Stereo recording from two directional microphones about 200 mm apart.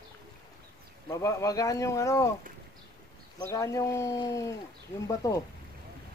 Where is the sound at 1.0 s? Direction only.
15° left (ahead or behind).